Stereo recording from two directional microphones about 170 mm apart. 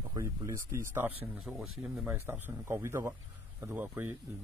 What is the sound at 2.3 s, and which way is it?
Speech, 15° right (ahead or behind).